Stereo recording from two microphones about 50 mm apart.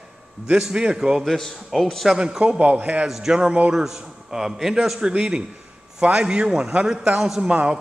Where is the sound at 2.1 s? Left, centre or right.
Centre.